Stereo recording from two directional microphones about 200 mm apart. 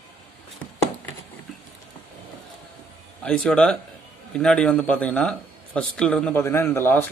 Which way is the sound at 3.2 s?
5° left (ahead or behind).